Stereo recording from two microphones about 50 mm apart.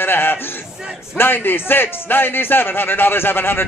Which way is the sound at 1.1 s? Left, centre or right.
Left.